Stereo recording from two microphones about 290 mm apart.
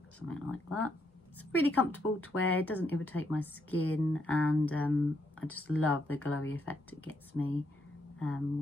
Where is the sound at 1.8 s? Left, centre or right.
Left.